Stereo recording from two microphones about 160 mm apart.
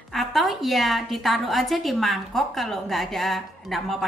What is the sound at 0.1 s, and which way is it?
A woman's voice, centre (ahead or behind).